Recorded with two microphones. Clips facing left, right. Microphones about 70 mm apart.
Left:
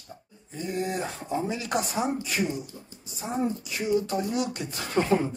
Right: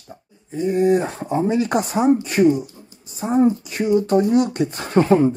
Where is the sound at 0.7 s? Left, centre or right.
Right.